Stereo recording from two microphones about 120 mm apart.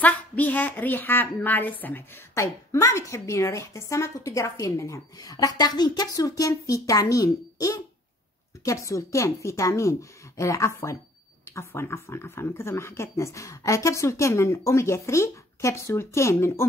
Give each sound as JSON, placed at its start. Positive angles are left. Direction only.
{"t": 0.0, "sound": "a woman's voice", "side_deg": 15}